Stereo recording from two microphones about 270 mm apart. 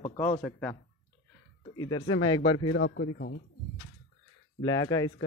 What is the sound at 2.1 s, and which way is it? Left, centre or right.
Speech, left.